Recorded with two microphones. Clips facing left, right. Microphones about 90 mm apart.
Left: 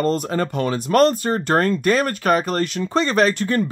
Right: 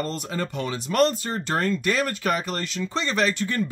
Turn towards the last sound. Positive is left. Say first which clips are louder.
# left 6 dB
turn(degrees=45)  # may be behind; listen again after turning